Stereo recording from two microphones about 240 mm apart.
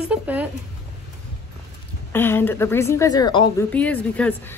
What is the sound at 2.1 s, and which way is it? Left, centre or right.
A woman's voice, centre.